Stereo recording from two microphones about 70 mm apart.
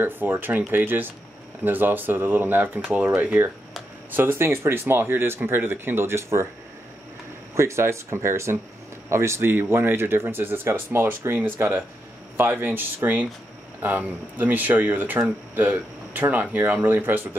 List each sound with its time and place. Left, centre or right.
0.0 s speech: right
7.5 s speech: right